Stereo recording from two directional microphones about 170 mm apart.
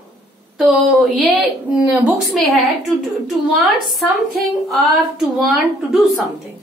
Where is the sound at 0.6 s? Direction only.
Centre (ahead or behind).